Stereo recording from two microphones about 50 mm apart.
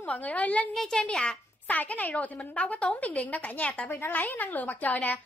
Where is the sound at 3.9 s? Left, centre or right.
Left.